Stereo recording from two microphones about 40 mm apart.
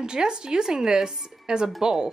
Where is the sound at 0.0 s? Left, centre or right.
Centre.